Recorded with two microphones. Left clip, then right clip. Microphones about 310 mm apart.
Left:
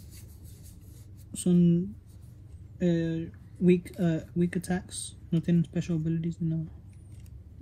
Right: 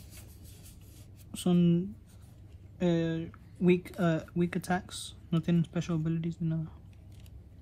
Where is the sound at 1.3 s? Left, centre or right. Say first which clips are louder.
Left 2 dB; right.